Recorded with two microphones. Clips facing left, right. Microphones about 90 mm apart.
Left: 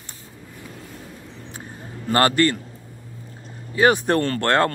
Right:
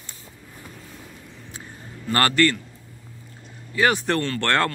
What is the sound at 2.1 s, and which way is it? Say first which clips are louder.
Speech: left 2 dB; 25° left (ahead or behind).